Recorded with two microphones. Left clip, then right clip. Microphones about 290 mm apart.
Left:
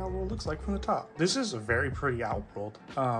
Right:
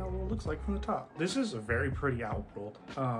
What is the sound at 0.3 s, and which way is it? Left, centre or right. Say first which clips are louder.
Speech: left 2 dB; centre.